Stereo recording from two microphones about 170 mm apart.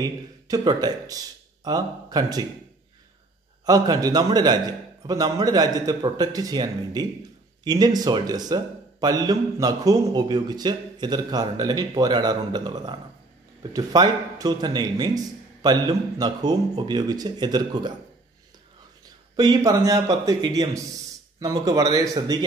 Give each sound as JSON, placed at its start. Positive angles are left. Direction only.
{"t": 0.0, "sound": "speech", "side_deg": -25}
{"t": 3.6, "sound": "speech", "side_deg": -20}
{"t": 19.3, "sound": "speech", "side_deg": -20}